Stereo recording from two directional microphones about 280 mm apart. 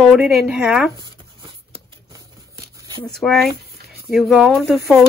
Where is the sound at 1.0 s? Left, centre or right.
Centre.